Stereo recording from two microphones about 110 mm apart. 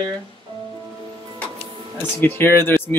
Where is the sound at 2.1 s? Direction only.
20° left (ahead or behind).